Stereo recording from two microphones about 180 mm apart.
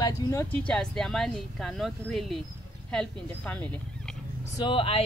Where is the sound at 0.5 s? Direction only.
5° left (ahead or behind).